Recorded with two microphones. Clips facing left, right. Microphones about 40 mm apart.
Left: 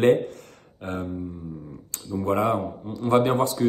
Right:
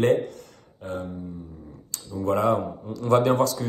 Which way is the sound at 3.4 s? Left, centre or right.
Left.